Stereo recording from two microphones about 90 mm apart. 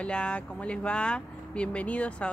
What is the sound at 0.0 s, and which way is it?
Speech, 10° left (ahead or behind).